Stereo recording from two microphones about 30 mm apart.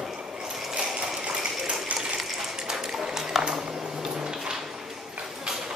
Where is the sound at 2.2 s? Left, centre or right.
Centre.